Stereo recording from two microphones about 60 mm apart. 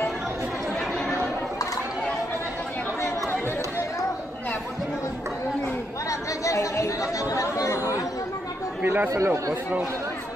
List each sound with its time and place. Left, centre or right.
6.0 s chatter: left
8.8 s chatter: right
9.1 s speech: right